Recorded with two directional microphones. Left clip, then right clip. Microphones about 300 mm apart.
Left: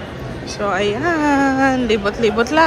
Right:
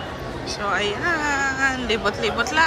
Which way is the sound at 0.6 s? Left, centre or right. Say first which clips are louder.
Left 5 dB; centre.